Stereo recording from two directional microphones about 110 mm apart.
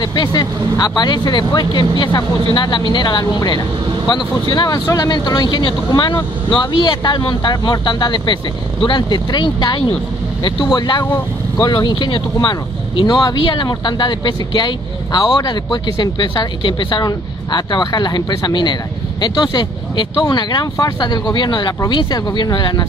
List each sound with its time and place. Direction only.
0.0 s speech: 40° left (ahead or behind)